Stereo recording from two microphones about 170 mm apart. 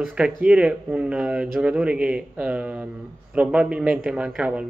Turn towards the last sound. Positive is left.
turn(degrees=-5)  # may be behind; listen again after turning